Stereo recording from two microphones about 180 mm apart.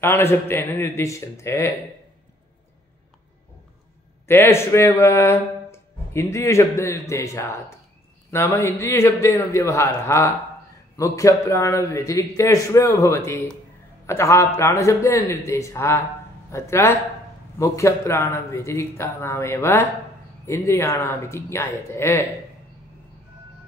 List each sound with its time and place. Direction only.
0.0 s speech: 15° left (ahead or behind)
4.3 s speech: 15° left (ahead or behind)